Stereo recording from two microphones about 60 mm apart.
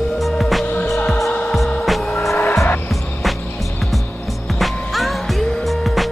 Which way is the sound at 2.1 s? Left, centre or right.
Left.